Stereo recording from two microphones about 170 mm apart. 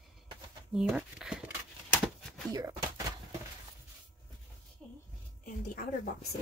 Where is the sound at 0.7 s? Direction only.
5° right (ahead or behind).